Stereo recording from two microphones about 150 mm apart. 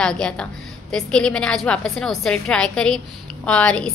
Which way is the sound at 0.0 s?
5° left (ahead or behind).